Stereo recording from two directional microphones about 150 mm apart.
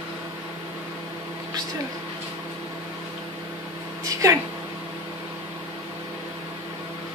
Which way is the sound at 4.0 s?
20° right (ahead or behind).